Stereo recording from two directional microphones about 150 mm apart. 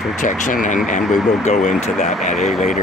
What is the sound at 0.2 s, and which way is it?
Speech, 60° left (ahead or behind).